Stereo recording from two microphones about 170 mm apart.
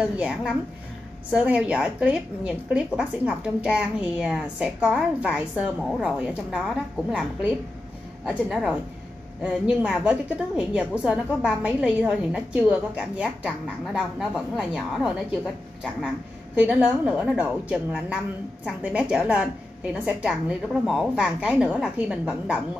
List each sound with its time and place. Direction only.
0.2 s a woman's voice: 5° right (ahead or behind)